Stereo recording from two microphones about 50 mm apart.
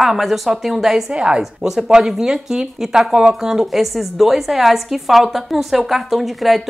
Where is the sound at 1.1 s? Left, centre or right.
Centre.